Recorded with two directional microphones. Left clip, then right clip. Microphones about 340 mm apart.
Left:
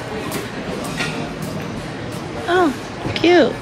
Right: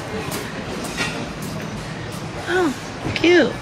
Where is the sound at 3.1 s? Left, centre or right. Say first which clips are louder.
Left 2 dB; centre.